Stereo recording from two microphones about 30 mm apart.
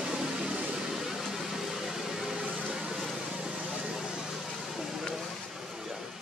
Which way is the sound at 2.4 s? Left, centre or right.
Right.